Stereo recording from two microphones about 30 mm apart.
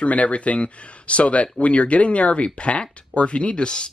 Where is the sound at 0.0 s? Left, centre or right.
Left.